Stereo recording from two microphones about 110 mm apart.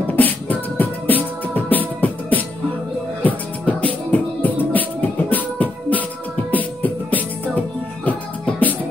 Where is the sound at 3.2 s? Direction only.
15° left (ahead or behind).